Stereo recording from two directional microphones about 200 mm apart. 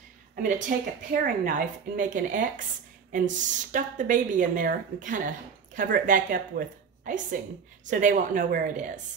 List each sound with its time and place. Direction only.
0.4 s a woman's voice: 40° right (ahead or behind)